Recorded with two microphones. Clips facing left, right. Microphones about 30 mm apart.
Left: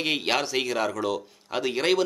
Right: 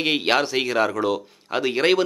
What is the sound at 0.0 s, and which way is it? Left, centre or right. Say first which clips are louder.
A man's voice: right 5 dB; centre.